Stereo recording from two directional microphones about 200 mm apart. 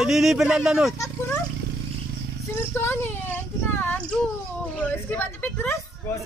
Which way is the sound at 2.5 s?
10° left (ahead or behind).